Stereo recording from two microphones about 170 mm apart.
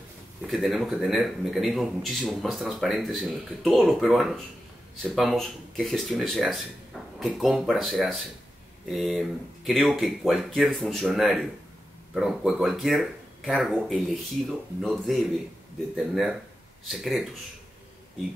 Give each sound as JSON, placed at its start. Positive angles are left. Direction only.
{"t": 0.5, "sound": "a man's voice", "side_deg": 0}